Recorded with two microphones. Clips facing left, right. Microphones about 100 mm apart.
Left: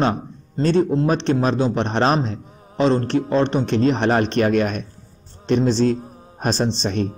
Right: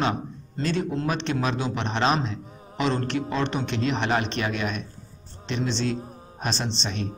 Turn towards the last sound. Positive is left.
turn(degrees=45)  # may be behind; listen again after turning